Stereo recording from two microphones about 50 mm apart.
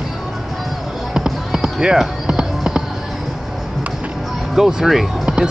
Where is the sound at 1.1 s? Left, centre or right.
Centre.